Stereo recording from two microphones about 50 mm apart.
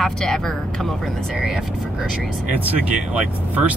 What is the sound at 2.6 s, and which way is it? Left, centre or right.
Speech, right.